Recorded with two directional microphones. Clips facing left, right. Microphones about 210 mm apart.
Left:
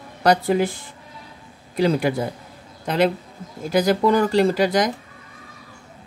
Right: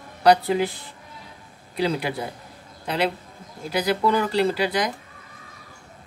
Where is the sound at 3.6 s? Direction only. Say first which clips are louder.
Left 5 dB; 45° left (ahead or behind).